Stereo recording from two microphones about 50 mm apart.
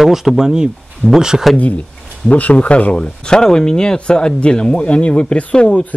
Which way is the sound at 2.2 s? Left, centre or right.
Left.